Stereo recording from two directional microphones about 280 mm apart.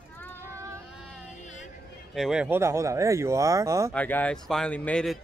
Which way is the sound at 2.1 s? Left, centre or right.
Centre.